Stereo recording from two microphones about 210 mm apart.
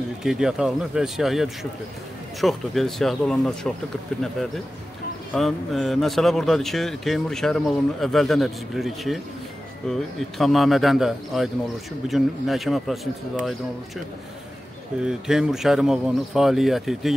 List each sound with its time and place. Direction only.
0.2 s speech: centre (ahead or behind)
5.3 s speech: centre (ahead or behind)
15.0 s speech: 5° right (ahead or behind)